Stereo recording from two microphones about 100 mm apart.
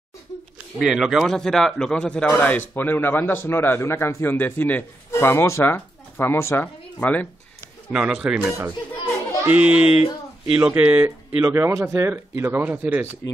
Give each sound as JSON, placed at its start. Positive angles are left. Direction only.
{"t": 0.7, "sound": "a man's voice", "side_deg": -5}
{"t": 7.9, "sound": "speech", "side_deg": -5}
{"t": 11.4, "sound": "speech", "side_deg": -30}